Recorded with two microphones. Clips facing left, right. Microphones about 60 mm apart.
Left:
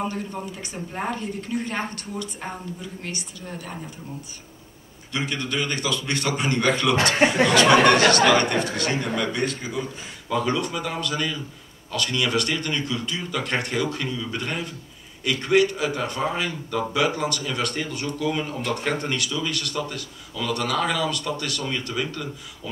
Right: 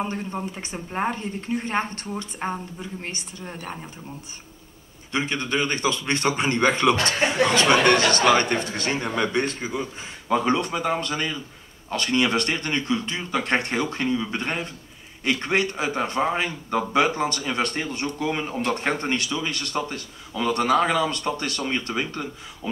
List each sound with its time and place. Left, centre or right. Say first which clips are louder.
0.1 s speech: right 1 dB; right
5.1 s speech: right 2 dB; right
7.0 s speech: left 3 dB; left
8.3 s speech: even; right